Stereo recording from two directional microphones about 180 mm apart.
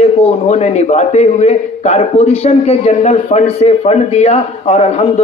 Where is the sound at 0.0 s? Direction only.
35° left (ahead or behind).